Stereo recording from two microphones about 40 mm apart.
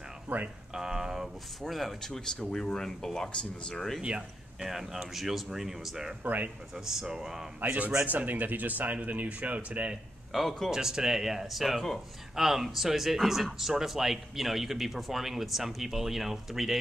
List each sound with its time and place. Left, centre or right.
0.3 s speech: right
0.7 s a sound: centre
1.6 s speech: centre
2.0 s speech: centre
3.3 s speech: left
4.6 s speech: centre
6.2 s speech: right
6.7 s speech: centre
8.0 s speech: right
10.3 s speech: centre
10.7 s speech: centre
12.4 s speech: centre